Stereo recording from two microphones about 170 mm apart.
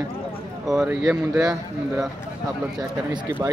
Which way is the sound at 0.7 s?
Centre (ahead or behind).